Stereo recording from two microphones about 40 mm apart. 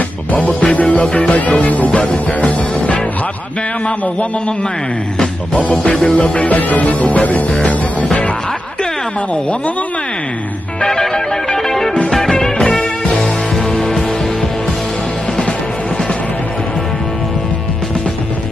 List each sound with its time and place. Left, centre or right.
0.3 s music: left
1.9 s music: left
6.0 s music: left
6.5 s music: left
10.8 s music: centre